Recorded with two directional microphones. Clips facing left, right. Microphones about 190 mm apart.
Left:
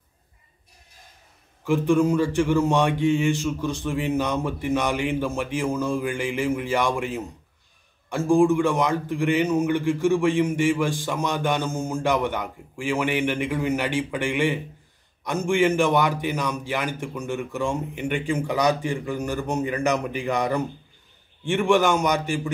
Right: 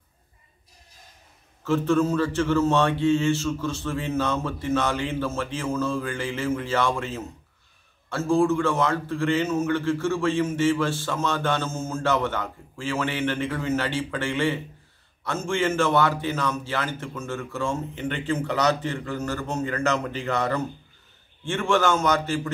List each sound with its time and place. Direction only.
1.6 s a man's voice: 15° left (ahead or behind)